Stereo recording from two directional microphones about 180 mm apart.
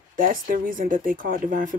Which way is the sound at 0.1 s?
50° right (ahead or behind).